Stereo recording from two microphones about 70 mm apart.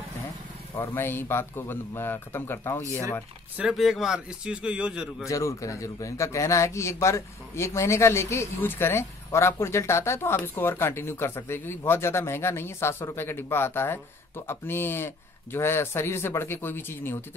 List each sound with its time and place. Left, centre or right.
0.7 s a man's voice: left
3.6 s a man's voice: centre
5.3 s a man's voice: left